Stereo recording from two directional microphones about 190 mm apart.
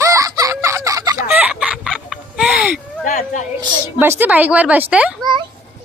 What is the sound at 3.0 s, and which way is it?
Speech, 40° left (ahead or behind).